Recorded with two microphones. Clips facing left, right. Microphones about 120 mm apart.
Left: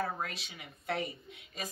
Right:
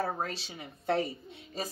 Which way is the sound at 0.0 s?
30° right (ahead or behind).